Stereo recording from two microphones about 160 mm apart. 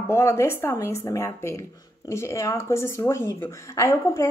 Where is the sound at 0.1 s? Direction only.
15° left (ahead or behind).